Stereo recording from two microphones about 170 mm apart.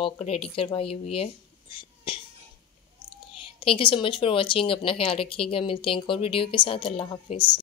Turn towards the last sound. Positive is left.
turn(degrees=30)  # may be behind; listen again after turning